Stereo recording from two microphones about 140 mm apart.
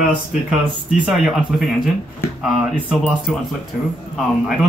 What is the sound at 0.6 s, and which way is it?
Speech, 5° right (ahead or behind).